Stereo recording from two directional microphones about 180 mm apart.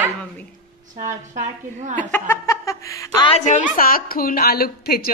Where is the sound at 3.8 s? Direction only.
55° left (ahead or behind).